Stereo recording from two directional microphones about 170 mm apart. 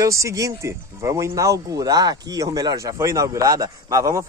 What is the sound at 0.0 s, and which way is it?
Speech, 20° right (ahead or behind).